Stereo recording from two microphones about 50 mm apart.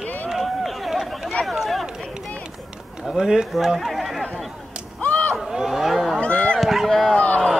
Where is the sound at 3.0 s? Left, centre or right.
Centre.